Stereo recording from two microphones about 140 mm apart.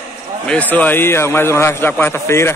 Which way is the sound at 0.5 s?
10° left (ahead or behind).